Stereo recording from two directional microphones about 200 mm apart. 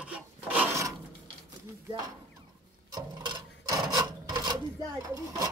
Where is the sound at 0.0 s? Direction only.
5° right (ahead or behind).